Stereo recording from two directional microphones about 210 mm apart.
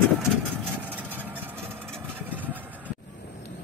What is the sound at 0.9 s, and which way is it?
Vehicle, 10° right (ahead or behind).